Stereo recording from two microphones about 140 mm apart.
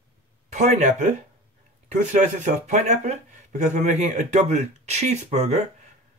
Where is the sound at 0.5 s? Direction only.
55° right (ahead or behind).